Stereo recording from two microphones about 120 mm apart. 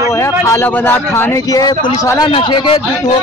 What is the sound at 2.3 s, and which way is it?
Speech, 45° left (ahead or behind).